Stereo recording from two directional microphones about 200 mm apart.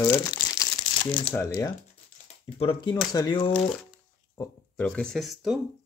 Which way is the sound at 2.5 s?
25° left (ahead or behind).